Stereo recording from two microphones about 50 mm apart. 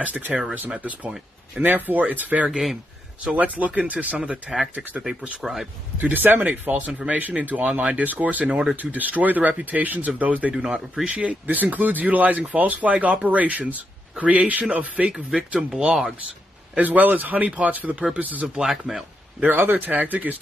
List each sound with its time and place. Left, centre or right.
0.0 s speech: right
3.5 s speech: right
5.4 s speech: centre
5.9 s speech: right
10.5 s speech: centre
11.1 s speech: right
11.4 s speech: right; by 15.9 s centre
15.9 s speech: centre
16.7 s speech: right
18.6 s speech: centre
19.4 s speech: right